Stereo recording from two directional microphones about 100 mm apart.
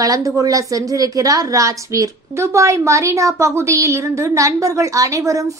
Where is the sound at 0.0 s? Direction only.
35° right (ahead or behind).